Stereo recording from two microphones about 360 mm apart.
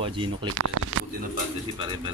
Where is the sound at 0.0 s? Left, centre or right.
Centre.